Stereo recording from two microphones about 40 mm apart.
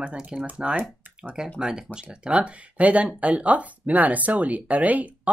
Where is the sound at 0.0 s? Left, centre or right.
Right.